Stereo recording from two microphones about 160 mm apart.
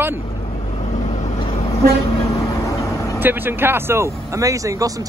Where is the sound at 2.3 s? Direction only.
20° left (ahead or behind).